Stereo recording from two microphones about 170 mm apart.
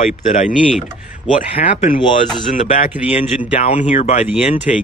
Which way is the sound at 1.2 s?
30° left (ahead or behind).